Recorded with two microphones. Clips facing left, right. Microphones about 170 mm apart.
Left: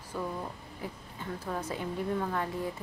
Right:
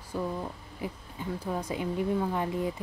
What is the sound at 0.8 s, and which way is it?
Speech, 15° right (ahead or behind).